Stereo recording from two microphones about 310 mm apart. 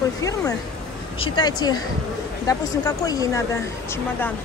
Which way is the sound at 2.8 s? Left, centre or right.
Centre.